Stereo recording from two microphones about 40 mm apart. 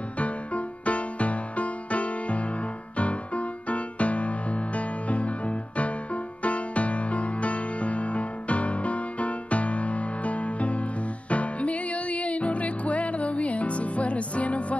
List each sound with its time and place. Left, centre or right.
0.2 s music: left